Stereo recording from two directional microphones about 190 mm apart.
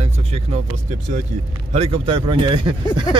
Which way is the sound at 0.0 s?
35° right (ahead or behind).